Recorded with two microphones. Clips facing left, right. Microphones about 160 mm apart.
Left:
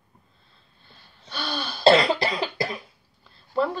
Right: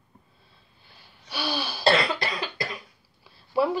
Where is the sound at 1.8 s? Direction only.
25° left (ahead or behind).